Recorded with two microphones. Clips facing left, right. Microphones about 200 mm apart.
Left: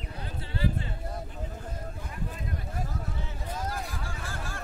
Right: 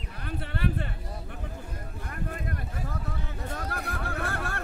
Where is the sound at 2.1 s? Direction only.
60° right (ahead or behind).